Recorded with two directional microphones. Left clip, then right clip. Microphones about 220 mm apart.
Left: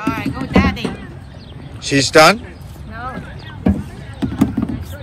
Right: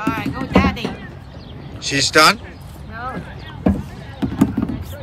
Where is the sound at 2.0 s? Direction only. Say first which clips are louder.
Left 3 dB; centre (ahead or behind).